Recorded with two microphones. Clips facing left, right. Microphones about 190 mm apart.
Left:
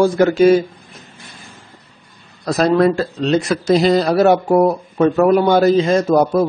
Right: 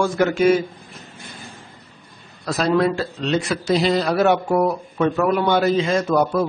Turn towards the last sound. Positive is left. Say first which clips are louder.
# left 5 dB
turn(degrees=40)  # may be behind; listen again after turning